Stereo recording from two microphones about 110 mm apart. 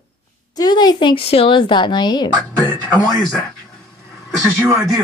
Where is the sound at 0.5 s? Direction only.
40° left (ahead or behind).